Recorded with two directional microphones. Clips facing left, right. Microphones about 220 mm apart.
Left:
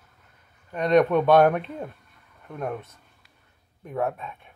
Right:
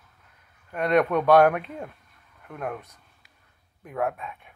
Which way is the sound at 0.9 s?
25° left (ahead or behind).